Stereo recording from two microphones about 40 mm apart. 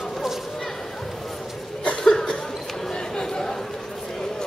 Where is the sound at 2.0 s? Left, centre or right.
Left.